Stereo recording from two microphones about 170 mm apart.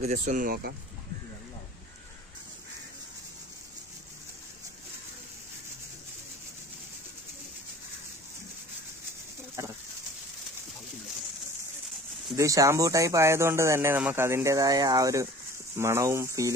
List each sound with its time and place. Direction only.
0.0 s speech: 45° right (ahead or behind); by 0.7 s 65° right (ahead or behind)
9.6 s speech: 15° right (ahead or behind)
12.4 s speech: 20° right (ahead or behind)